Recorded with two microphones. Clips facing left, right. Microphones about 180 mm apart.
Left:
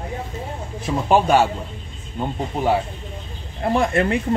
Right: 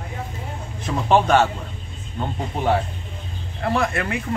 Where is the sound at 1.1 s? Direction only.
10° left (ahead or behind).